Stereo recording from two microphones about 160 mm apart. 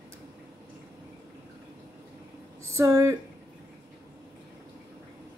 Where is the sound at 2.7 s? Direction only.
20° right (ahead or behind).